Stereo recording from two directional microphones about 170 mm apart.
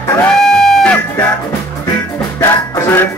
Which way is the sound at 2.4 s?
10° left (ahead or behind).